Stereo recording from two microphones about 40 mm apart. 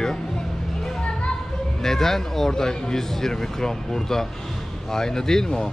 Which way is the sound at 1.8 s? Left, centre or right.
Centre.